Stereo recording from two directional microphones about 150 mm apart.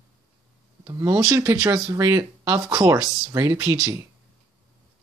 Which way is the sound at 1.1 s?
20° right (ahead or behind).